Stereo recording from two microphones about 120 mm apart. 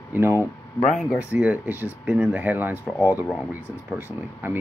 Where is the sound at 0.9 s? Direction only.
10° right (ahead or behind).